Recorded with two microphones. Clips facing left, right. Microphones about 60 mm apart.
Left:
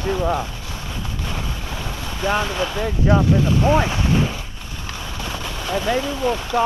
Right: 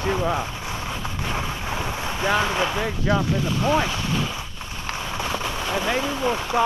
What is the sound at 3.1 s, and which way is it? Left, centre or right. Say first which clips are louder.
Speech: left 6 dB; left.